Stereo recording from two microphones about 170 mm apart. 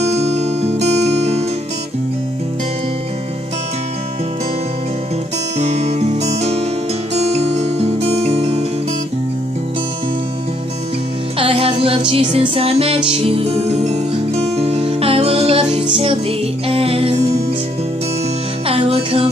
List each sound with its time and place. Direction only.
0.2 s music: 40° right (ahead or behind)
5.6 s music: 40° right (ahead or behind)
7.2 s guitar: 40° right (ahead or behind)
11.3 s music: 35° right (ahead or behind)
18.7 s music: 35° right (ahead or behind)